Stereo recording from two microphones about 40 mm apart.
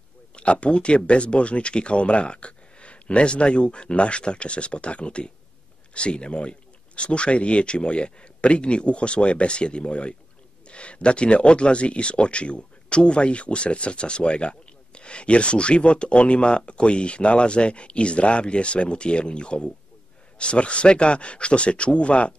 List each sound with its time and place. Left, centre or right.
0.4 s speech: left